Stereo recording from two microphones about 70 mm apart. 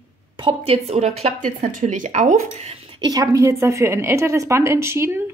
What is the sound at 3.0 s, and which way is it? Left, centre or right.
Speech, right.